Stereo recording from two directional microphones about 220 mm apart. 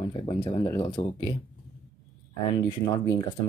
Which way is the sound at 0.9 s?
25° left (ahead or behind).